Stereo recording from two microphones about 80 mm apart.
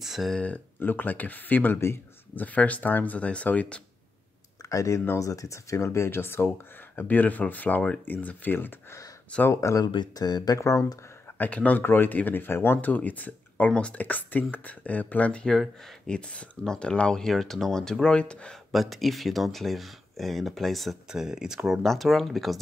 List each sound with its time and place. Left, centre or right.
0.0 s speech: centre
0.7 s speech: left
4.6 s speech: left
9.5 s speech: left
10.1 s speech: left
10.6 s speech: left
11.3 s speech: centre
18.7 s speech: centre
21.8 s speech: centre